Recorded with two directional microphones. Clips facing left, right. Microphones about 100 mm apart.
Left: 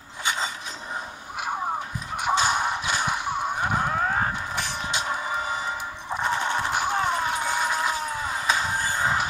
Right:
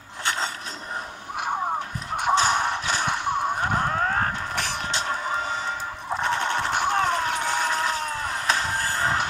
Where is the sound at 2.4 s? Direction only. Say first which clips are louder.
Right 1 dB; 10° left (ahead or behind).